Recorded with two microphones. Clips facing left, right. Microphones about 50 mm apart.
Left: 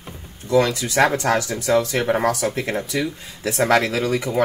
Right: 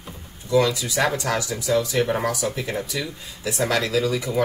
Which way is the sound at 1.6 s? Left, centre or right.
Left.